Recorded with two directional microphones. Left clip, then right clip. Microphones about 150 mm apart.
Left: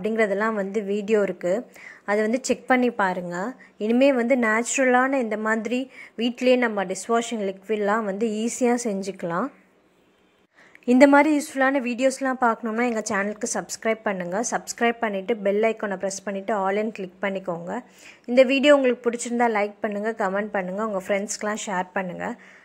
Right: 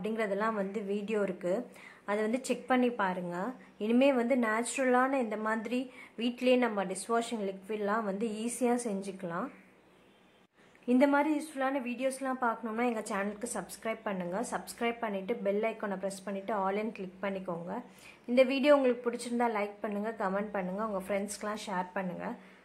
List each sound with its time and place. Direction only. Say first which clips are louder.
0.0 s a woman's voice: left 10 dB; 35° left (ahead or behind)
10.9 s a woman's voice: left 11 dB; 50° left (ahead or behind)